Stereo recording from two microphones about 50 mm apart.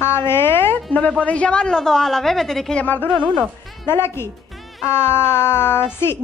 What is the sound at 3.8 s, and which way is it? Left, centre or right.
A woman's voice, left.